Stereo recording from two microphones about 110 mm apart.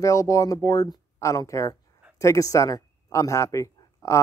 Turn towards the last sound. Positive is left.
turn(degrees=30)  # may be behind; listen again after turning